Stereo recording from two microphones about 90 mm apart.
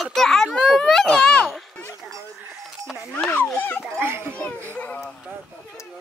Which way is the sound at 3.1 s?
20° left (ahead or behind).